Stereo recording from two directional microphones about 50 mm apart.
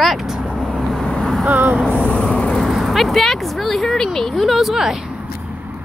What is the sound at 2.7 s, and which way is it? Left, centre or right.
Speech, centre.